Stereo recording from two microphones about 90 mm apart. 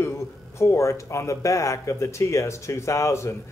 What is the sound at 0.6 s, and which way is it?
A man's voice, 30° left (ahead or behind).